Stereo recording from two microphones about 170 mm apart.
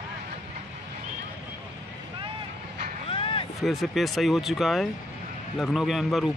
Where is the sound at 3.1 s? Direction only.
30° left (ahead or behind).